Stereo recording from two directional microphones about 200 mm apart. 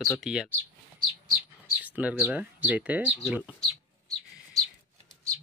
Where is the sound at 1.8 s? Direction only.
5° right (ahead or behind).